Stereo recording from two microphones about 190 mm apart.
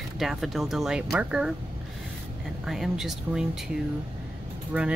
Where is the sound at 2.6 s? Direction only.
Centre (ahead or behind).